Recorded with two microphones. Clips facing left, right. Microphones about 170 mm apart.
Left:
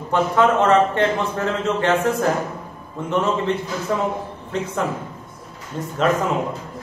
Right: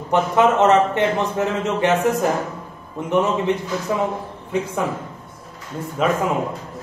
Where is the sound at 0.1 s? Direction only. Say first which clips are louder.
Right 1 dB; 20° right (ahead or behind).